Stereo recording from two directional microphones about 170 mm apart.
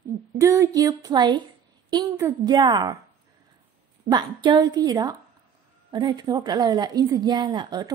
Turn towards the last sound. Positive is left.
turn(degrees=-25)  # may be behind; listen again after turning